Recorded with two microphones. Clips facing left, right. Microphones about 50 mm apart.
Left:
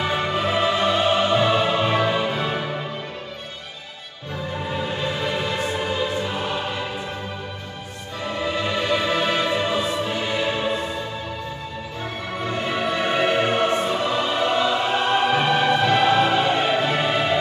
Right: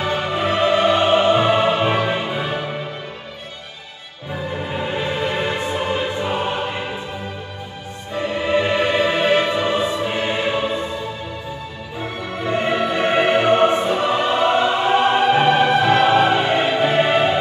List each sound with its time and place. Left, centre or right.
0.5 s music: right
0.7 s music: right
2.2 s music: centre
4.7 s music: right
8.2 s music: right
12.5 s music: right